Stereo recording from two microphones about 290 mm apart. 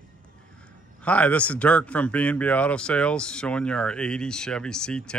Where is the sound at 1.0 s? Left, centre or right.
Centre.